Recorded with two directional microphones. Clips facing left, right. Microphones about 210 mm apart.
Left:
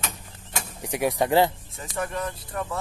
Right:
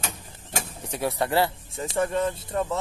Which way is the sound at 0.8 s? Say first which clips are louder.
Left 3 dB; 15° left (ahead or behind).